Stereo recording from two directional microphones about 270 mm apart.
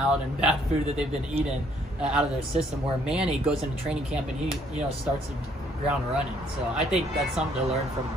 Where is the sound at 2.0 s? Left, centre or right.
Centre.